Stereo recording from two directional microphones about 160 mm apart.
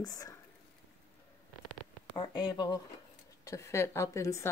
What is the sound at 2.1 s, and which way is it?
Speech, 30° left (ahead or behind).